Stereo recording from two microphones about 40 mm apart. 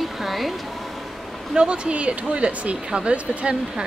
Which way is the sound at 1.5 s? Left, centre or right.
Right.